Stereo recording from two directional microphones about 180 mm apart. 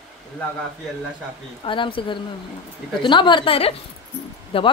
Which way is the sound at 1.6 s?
30° left (ahead or behind).